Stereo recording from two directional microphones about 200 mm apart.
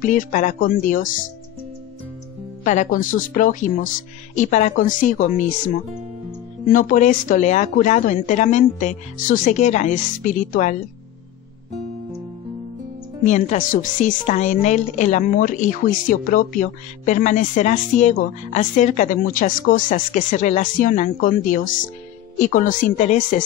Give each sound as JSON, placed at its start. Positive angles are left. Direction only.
{"t": 0.0, "sound": "a woman's voice", "side_deg": 40}
{"t": 2.6, "sound": "a woman's voice", "side_deg": 40}
{"t": 13.2, "sound": "a woman's voice", "side_deg": 35}